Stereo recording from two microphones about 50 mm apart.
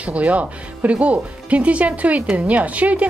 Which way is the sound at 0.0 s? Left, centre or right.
Right.